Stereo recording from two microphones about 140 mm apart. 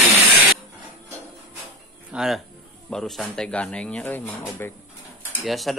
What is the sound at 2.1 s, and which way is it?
Speech, centre (ahead or behind).